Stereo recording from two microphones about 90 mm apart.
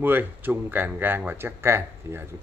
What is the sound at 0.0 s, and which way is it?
Speech, 25° right (ahead or behind).